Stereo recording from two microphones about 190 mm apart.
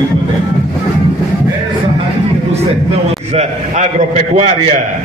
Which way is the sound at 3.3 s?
35° right (ahead or behind).